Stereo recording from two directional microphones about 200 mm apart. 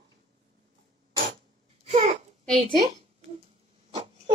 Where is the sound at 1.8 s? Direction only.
30° right (ahead or behind).